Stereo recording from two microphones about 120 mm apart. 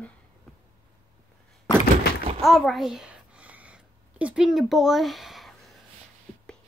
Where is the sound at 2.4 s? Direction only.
Centre (ahead or behind).